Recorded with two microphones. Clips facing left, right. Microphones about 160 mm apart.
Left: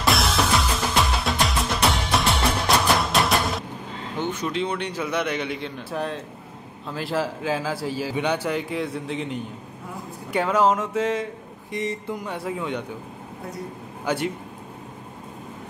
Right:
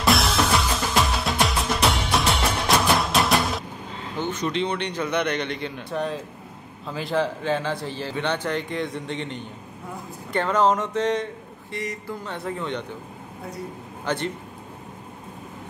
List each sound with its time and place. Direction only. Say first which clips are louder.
0.0 s music: right 1 dB; centre (ahead or behind)
4.2 s speech: right 1 dB; 10° left (ahead or behind)
11.7 s speech: left 3 dB; 20° left (ahead or behind)
12.2 s speech: left 1 dB; 10° left (ahead or behind)
14.0 s speech: left 2 dB; 10° left (ahead or behind)